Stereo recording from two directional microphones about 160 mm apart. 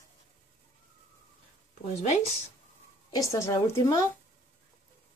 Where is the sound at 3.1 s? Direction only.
20° left (ahead or behind).